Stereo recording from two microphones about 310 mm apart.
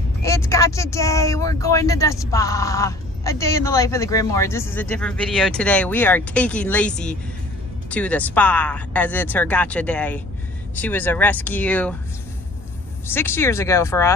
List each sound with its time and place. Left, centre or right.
0.2 s speech: centre
13.0 s speech: centre